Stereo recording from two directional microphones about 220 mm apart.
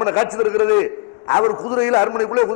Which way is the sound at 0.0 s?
20° left (ahead or behind).